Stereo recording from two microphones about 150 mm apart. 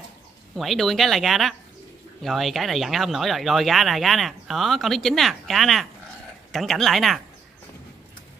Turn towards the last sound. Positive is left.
turn(degrees=0)  # may be behind; listen again after turning